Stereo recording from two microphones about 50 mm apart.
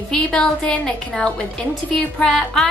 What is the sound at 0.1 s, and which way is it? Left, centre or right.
A woman's voice, centre.